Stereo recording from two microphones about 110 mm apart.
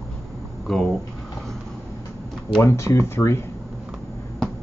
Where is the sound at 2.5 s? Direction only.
25° left (ahead or behind).